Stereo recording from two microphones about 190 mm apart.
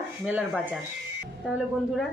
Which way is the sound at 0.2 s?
5° right (ahead or behind).